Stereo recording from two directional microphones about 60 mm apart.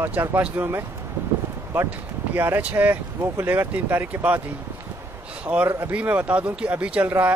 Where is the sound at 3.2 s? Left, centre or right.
Right.